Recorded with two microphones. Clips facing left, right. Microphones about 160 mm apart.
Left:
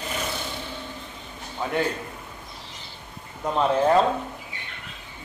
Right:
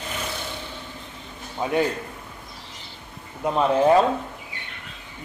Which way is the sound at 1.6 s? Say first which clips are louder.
Right 3 dB; 15° right (ahead or behind).